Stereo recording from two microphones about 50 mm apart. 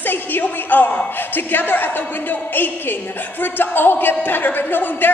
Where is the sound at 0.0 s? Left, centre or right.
Left.